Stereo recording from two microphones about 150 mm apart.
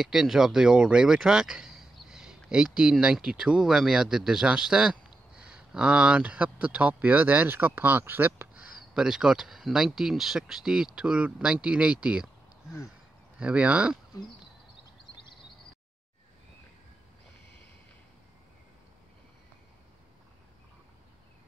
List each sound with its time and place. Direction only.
0.0 s speech: 5° right (ahead or behind)
13.4 s speech: 10° right (ahead or behind)